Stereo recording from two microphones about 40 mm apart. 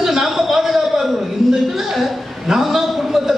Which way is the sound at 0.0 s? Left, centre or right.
Centre.